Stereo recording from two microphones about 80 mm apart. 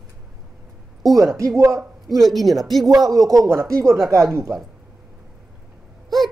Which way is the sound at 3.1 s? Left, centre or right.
Right.